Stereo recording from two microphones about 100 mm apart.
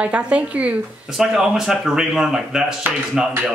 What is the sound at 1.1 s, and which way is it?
Speech, centre (ahead or behind).